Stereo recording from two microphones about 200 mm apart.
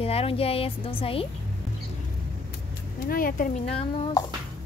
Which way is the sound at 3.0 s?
45° left (ahead or behind).